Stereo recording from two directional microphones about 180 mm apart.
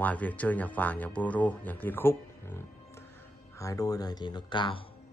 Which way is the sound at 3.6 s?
20° left (ahead or behind).